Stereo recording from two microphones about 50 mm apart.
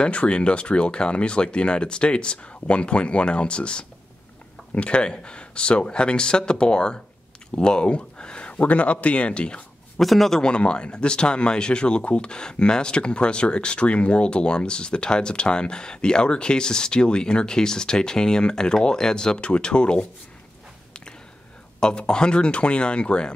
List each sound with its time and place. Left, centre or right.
0.0 s speech: left
9.9 s a man's voice: centre
10.4 s speech: centre
21.7 s speech: centre